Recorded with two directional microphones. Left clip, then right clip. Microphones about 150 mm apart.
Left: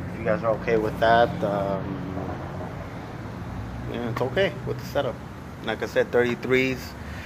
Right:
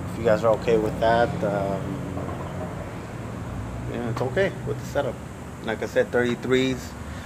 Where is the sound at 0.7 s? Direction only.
35° right (ahead or behind).